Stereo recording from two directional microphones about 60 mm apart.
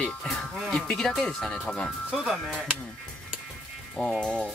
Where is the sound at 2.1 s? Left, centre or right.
Centre.